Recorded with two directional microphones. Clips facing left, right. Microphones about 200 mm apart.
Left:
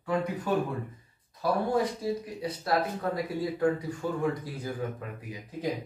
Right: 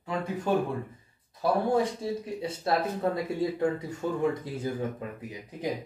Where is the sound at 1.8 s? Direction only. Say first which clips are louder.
Even; 25° right (ahead or behind).